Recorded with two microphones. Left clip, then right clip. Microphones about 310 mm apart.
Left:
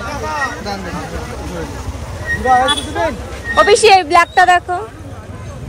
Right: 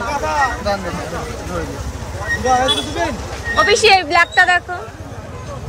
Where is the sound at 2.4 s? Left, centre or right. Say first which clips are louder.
Left 3 dB; centre.